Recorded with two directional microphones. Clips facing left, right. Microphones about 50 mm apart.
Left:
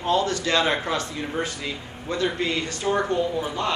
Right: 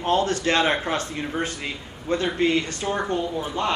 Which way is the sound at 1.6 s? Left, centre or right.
Right.